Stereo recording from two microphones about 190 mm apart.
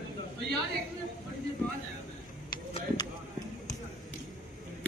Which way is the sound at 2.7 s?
20° left (ahead or behind).